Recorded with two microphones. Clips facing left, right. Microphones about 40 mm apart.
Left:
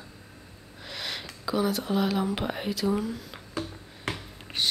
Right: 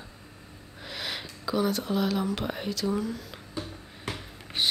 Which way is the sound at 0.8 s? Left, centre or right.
Centre.